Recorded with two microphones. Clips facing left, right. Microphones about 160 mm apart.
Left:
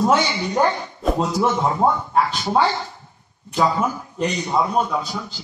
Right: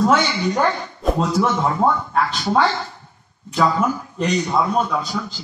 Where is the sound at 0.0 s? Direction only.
20° left (ahead or behind).